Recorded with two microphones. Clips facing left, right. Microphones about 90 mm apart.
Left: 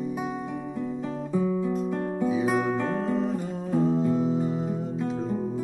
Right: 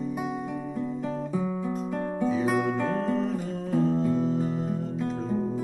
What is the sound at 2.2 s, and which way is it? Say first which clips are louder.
Music: even; 10° left (ahead or behind).